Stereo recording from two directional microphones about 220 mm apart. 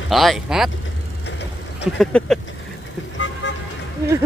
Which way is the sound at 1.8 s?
5° left (ahead or behind).